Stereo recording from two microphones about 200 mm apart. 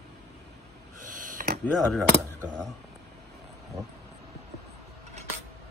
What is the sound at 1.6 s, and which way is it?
Speech, 5° left (ahead or behind).